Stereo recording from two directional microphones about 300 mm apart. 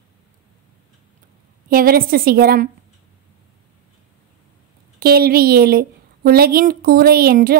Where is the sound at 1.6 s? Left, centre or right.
Right.